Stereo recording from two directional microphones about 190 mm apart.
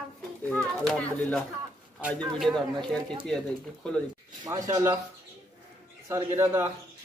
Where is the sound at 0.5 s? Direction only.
5° left (ahead or behind).